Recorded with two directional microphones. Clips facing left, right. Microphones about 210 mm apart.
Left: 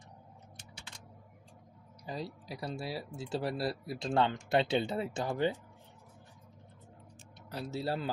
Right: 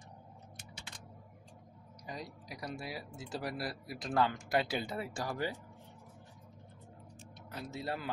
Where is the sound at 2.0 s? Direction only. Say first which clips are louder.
Left 5 dB; 30° left (ahead or behind).